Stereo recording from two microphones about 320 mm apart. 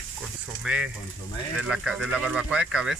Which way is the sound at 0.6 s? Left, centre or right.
Centre.